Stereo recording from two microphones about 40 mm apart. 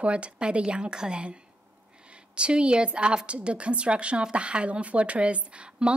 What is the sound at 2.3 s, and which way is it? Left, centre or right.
A woman's voice, right.